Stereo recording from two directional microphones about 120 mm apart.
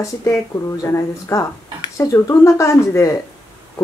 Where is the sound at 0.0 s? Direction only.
25° left (ahead or behind).